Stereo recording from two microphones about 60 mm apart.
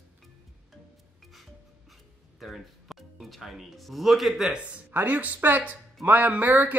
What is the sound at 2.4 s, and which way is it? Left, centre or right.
Music, centre.